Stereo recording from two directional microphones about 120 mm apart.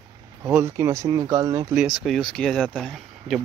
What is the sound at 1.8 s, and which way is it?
Speech, 5° right (ahead or behind).